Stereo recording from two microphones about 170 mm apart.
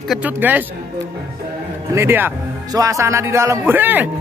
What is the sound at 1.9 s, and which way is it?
Speech, 15° right (ahead or behind).